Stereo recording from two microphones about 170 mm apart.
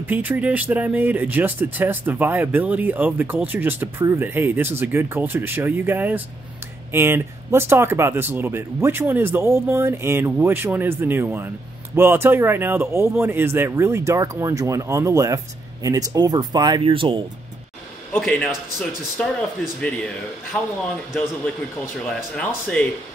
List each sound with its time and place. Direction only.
0.0 s speech: 10° right (ahead or behind); by 17.2 s 30° right (ahead or behind)
18.2 s a man's voice: 10° left (ahead or behind)
22.1 s speech: 10° left (ahead or behind)